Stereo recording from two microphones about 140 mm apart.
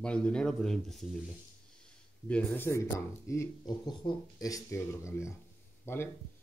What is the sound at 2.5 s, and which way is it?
Speech, 20° left (ahead or behind).